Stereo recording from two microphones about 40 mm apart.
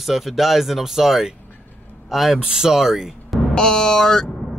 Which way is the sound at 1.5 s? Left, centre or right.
Left.